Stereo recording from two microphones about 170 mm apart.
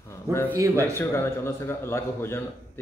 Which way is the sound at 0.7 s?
15° left (ahead or behind).